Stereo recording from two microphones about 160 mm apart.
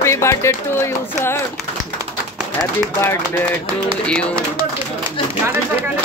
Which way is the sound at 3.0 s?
15° left (ahead or behind).